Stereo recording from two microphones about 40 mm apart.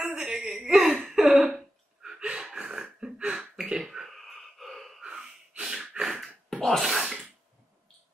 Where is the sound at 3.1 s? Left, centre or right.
Right.